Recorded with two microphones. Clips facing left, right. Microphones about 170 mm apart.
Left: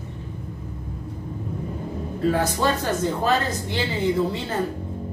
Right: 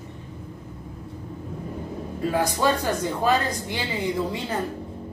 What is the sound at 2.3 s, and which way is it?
A woman's voice, 15° right (ahead or behind).